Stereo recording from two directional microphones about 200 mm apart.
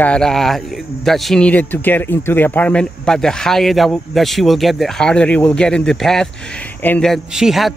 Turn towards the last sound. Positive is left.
turn(degrees=0)  # may be behind; listen again after turning